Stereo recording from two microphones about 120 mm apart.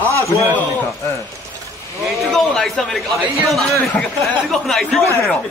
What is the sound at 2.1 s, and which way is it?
Speech, centre (ahead or behind).